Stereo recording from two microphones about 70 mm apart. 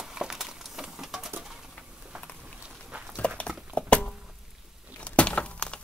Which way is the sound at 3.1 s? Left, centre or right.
Centre.